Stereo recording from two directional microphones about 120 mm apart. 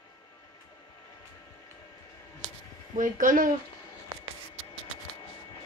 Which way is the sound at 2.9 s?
90° right.